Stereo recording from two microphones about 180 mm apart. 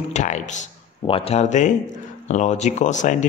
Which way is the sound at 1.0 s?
30° left (ahead or behind).